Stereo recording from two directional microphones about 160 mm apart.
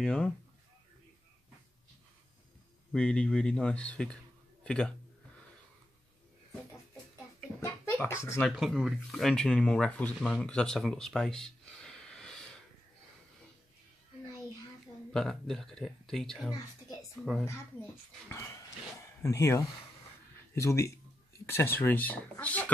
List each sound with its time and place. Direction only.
0.0 s speech: 5° left (ahead or behind)
2.9 s speech: 5° left (ahead or behind)
7.3 s a sound: 15° left (ahead or behind)
8.4 s speech: centre (ahead or behind)
15.1 s speech: centre (ahead or behind)
18.3 s a sound: 20° left (ahead or behind)
20.5 s speech: 20° left (ahead or behind)